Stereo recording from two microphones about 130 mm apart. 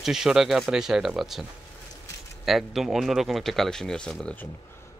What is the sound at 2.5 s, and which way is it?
Speech, centre (ahead or behind).